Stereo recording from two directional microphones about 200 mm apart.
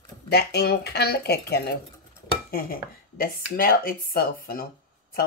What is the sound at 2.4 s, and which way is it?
Dishes, 50° left (ahead or behind).